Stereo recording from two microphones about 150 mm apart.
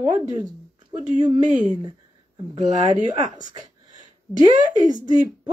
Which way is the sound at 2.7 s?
50° right (ahead or behind).